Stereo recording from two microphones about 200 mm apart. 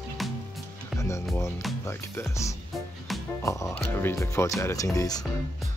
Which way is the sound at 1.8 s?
15° left (ahead or behind).